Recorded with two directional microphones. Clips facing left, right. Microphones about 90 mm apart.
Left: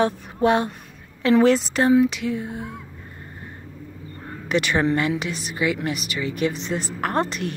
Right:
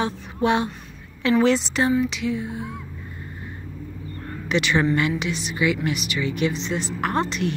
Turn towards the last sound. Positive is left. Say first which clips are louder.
# even
turn(degrees=45)  # may be behind; listen again after turning